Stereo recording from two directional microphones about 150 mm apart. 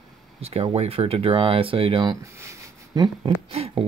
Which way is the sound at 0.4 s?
40° right (ahead or behind).